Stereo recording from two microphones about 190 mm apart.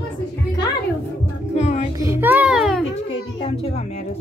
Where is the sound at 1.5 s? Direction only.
35° left (ahead or behind).